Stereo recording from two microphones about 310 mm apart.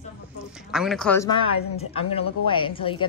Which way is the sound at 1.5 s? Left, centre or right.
Left.